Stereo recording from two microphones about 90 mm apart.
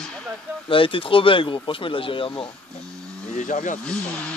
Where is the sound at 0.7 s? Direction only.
80° left.